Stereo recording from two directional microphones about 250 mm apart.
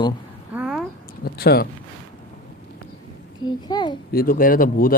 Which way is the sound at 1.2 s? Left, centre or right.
Left.